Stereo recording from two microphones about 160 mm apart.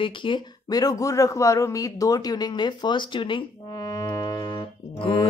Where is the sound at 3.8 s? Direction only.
20° left (ahead or behind).